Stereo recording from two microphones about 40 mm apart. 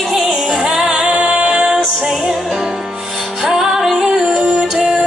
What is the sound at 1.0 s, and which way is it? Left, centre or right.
Music, right.